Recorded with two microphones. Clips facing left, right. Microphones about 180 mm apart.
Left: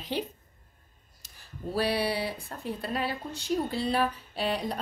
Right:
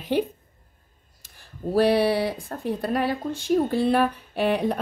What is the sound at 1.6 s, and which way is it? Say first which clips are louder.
Speech: right 9 dB; 45° right (ahead or behind).